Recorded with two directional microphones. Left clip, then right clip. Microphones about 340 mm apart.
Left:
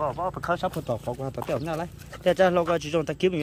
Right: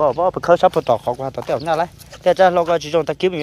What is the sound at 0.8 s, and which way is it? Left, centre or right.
Speech, centre.